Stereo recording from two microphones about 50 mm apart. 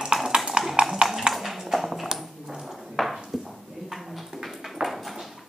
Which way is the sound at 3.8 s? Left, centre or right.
Centre.